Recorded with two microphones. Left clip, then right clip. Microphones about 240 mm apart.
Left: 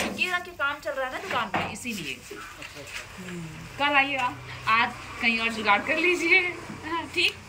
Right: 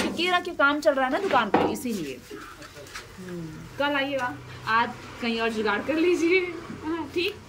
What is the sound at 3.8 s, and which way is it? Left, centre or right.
Speech, centre.